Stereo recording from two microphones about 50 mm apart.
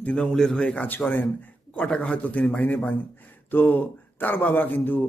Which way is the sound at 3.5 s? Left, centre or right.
Left.